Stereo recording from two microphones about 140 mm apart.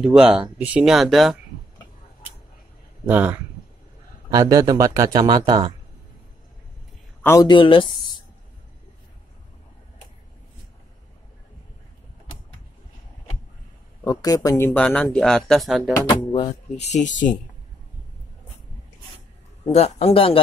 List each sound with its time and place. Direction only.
0.2 s speech: 10° right (ahead or behind)
3.1 s speech: 15° right (ahead or behind)
4.3 s speech: 25° right (ahead or behind)
7.4 s speech: 35° left (ahead or behind)
14.0 s speech: 25° left (ahead or behind)
14.7 s speech: 10° left (ahead or behind)
16.1 s speech: 40° left (ahead or behind); by 17.4 s 65° left (ahead or behind)
19.7 s speech: 50° left (ahead or behind)